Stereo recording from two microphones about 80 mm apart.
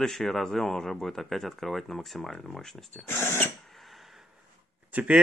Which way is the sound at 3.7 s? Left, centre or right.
Centre.